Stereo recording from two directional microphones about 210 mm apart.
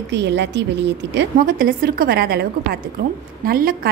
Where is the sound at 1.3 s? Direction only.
40° right (ahead or behind).